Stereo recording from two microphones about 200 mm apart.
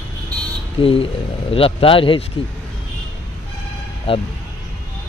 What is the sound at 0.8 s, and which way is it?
Speech, 30° left (ahead or behind).